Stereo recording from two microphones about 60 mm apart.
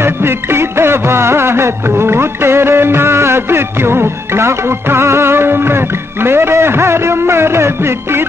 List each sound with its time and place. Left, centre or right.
0.0 s music: right